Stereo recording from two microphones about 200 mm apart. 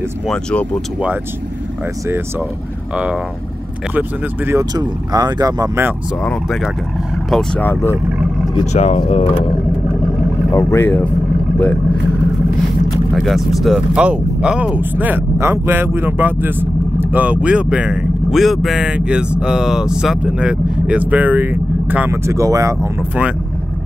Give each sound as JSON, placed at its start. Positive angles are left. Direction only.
{"t": 0.3, "sound": "speech", "side_deg": 5}
{"t": 4.5, "sound": "speech", "side_deg": -15}
{"t": 6.2, "sound": "speech", "side_deg": 0}
{"t": 8.7, "sound": "speech", "side_deg": 35}
{"t": 10.5, "sound": "speech", "side_deg": 15}
{"t": 13.1, "sound": "speech", "side_deg": 0}